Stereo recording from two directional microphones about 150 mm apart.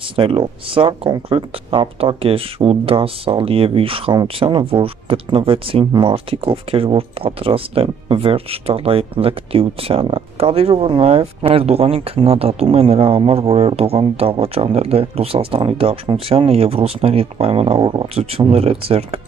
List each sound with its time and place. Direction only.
0.1 s speech: 35° right (ahead or behind)